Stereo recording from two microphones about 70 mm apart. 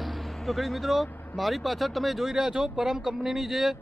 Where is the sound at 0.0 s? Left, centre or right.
Centre.